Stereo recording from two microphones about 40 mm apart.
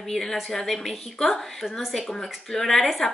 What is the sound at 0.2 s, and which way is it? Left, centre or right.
A woman's voice, centre.